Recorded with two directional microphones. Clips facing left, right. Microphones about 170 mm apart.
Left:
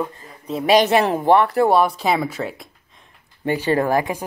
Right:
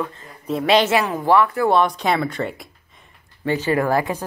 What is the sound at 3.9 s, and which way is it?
Speech, 15° left (ahead or behind).